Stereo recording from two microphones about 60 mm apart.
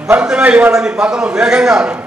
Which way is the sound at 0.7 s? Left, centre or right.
Centre.